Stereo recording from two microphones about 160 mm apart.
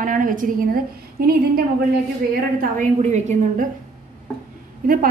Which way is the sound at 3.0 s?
45° right (ahead or behind).